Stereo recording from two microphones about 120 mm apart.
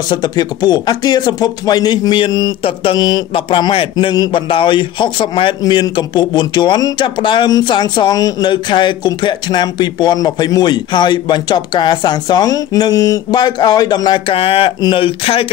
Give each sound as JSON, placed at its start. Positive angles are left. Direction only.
{"t": 0.1, "sound": "speech", "side_deg": 35}
{"t": 2.6, "sound": "a man's voice", "side_deg": 50}